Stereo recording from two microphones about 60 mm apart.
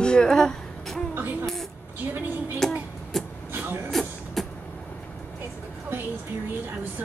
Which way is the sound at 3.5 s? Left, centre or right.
Right.